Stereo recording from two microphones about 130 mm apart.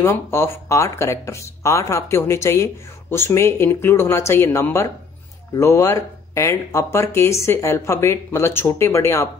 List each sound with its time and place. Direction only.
0.0 s speech: 20° left (ahead or behind)